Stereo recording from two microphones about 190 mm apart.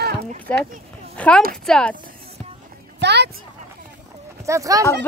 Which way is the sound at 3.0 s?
65° right (ahead or behind).